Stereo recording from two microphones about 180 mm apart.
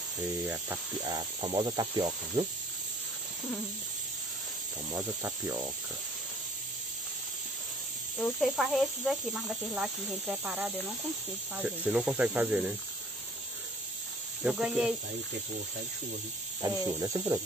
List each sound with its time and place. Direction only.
1.0 s a sound: 25° right (ahead or behind)
4.9 s speech: 15° right (ahead or behind)
8.2 s speech: centre (ahead or behind)
14.4 s speech: 5° right (ahead or behind)
16.6 s speech: 15° right (ahead or behind)